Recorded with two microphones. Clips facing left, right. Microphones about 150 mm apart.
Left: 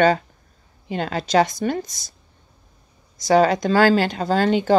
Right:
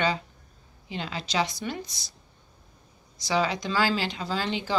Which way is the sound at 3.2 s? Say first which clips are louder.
Left 10 dB; 50° left (ahead or behind).